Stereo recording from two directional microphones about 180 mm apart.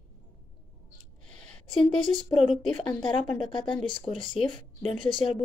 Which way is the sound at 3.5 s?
25° left (ahead or behind).